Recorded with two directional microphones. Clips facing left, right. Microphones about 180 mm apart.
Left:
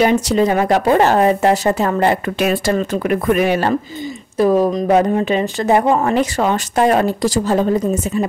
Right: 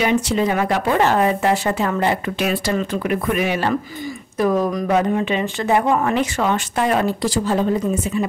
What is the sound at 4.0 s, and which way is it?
Speech, 30° left (ahead or behind).